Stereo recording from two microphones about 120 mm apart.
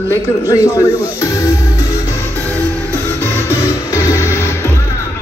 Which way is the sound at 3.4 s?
25° left (ahead or behind).